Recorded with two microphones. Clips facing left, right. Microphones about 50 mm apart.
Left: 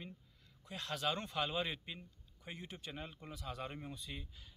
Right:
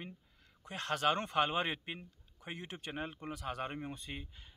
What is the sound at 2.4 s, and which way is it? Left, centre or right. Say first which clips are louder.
Speech: right 4 dB; right.